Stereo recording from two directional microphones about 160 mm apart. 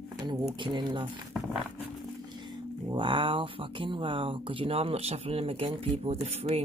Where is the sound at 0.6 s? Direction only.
30° right (ahead or behind).